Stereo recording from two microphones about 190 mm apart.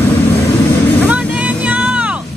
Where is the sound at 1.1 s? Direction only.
10° right (ahead or behind).